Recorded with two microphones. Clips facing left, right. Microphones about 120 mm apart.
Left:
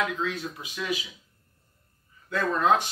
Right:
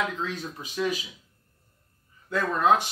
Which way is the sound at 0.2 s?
35° right (ahead or behind).